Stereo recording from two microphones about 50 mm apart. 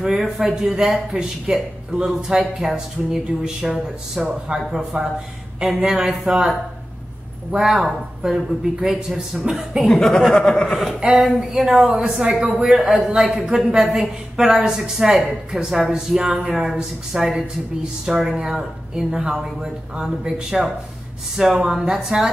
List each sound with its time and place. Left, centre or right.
0.2 s a man's voice: centre
4.5 s speech: right
5.6 s a man's voice: centre
7.5 s a man's voice: centre
9.8 s speech: centre
11.0 s a man's voice: centre
12.6 s a man's voice: centre